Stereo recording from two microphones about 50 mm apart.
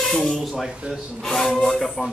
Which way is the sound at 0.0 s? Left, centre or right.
Centre.